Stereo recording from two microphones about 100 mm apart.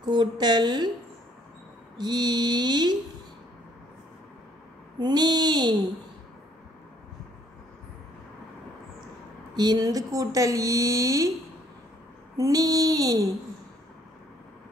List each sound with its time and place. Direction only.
0.0 s mantra: 45° right (ahead or behind)
2.0 s mantra: 45° right (ahead or behind)
4.9 s mantra: 45° right (ahead or behind)
9.6 s speech: 40° right (ahead or behind)
12.4 s speech: 35° right (ahead or behind)